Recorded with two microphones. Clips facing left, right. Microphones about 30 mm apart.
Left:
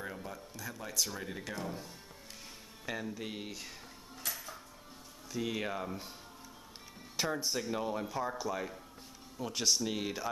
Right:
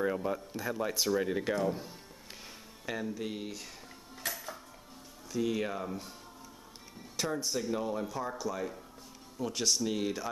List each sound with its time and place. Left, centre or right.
0.0 s speech: right
2.9 s speech: centre
4.2 s music: centre
5.3 s speech: centre
7.2 s speech: centre